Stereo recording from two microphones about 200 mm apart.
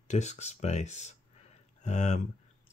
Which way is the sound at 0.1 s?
35° left (ahead or behind).